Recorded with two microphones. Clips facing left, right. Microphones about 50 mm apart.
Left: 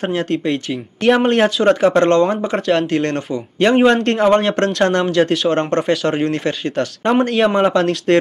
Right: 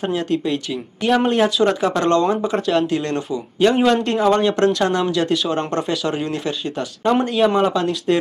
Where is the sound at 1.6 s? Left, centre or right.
Centre.